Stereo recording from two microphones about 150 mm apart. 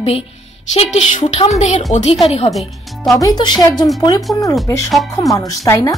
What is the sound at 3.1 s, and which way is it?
Speech, 25° left (ahead or behind).